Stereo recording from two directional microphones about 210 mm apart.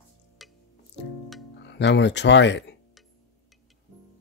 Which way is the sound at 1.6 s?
55° left (ahead or behind).